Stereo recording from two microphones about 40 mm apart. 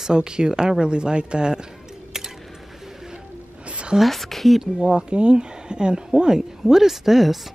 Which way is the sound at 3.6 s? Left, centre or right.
Right.